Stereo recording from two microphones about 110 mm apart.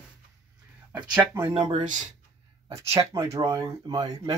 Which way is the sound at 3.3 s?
40° right (ahead or behind).